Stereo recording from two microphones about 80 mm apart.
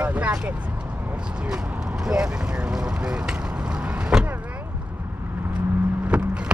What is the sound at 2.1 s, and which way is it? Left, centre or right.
Vehicle, centre.